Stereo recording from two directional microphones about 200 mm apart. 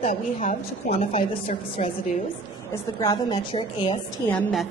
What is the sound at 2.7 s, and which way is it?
A woman's voice, 20° left (ahead or behind).